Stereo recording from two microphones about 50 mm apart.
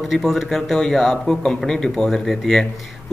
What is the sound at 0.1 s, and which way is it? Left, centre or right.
Speech, centre.